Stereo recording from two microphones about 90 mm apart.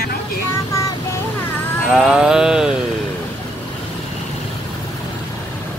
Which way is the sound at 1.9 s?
Centre (ahead or behind).